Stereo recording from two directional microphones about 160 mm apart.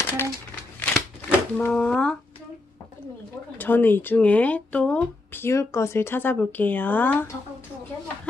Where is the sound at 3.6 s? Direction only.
10° left (ahead or behind).